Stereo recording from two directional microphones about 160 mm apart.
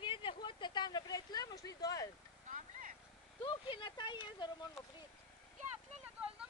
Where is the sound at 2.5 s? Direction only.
55° right (ahead or behind).